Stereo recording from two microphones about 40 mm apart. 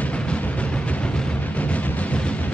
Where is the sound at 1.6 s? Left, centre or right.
Left.